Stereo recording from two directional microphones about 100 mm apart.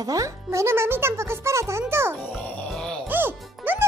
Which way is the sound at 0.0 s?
35° right (ahead or behind).